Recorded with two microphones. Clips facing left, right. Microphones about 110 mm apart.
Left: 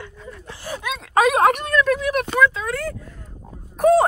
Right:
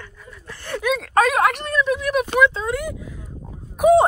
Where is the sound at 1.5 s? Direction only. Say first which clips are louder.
Left 2 dB; 50° left (ahead or behind).